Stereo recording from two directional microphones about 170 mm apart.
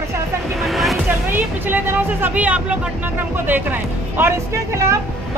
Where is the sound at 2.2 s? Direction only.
10° right (ahead or behind).